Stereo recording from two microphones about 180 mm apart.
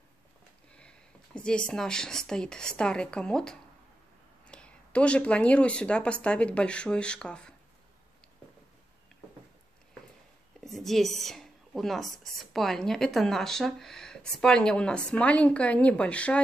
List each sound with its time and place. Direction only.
0.7 s speech: 5° left (ahead or behind)
10.6 s speech: centre (ahead or behind)